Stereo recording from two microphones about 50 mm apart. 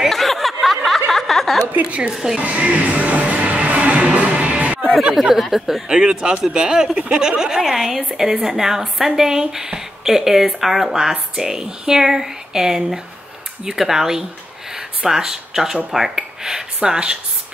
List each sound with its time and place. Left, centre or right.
0.0 s a sound: centre
1.1 s chuckle: centre
1.9 s speech: right
2.3 s music: right
5.4 s speech: centre
5.9 s speech: centre